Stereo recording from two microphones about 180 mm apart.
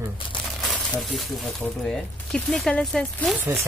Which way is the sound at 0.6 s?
Centre (ahead or behind).